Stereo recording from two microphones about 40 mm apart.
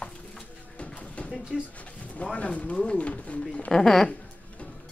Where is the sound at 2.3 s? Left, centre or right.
Left.